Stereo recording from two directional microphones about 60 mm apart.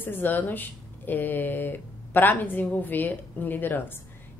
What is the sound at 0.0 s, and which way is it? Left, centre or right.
Speech, left.